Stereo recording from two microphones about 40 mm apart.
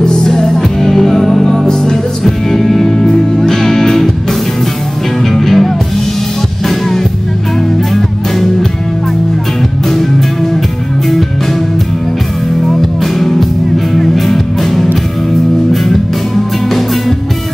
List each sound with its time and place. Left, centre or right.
0.0 s music: centre
6.7 s music: centre
9.8 s music: centre
13.0 s music: centre